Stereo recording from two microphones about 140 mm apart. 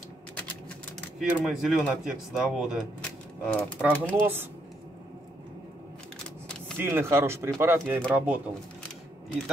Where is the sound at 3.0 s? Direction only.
10° left (ahead or behind).